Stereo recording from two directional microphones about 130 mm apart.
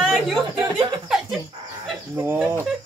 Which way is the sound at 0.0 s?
Centre (ahead or behind).